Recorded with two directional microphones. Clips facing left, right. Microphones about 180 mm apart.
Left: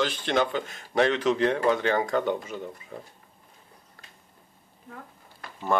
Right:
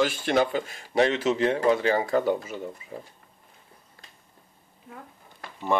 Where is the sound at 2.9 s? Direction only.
35° right (ahead or behind).